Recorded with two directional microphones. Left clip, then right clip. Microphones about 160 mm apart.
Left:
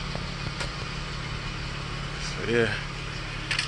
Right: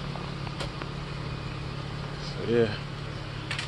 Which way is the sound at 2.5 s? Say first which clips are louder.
Even; centre (ahead or behind).